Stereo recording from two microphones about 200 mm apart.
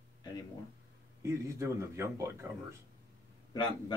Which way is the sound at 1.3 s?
15° right (ahead or behind).